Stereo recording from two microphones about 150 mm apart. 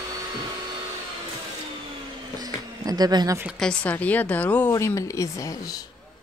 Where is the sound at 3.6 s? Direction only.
5° left (ahead or behind).